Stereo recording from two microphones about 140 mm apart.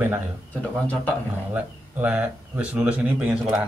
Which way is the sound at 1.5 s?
10° right (ahead or behind).